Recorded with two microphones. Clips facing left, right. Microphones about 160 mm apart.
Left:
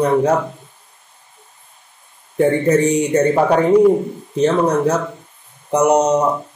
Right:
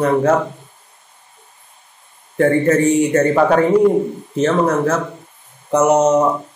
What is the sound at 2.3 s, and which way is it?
Speech, 15° left (ahead or behind).